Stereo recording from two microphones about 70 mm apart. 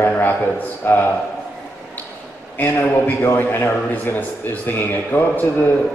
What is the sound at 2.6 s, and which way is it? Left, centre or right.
A man's voice, left.